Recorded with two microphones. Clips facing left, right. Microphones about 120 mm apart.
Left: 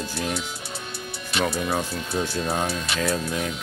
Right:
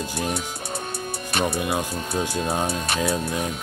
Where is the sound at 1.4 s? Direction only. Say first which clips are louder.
Right 1 dB; 50° right (ahead or behind).